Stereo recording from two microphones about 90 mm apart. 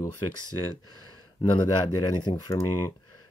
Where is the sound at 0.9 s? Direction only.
50° left (ahead or behind).